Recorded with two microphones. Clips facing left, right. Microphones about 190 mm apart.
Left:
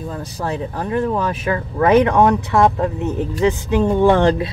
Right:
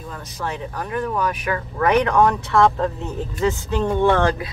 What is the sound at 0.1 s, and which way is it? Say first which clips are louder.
Speech: left 3 dB; 30° left (ahead or behind).